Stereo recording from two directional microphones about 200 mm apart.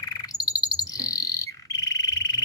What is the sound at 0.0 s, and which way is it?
Frog, 20° left (ahead or behind).